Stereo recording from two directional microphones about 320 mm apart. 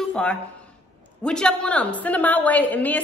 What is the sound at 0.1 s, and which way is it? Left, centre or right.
A woman's voice, centre.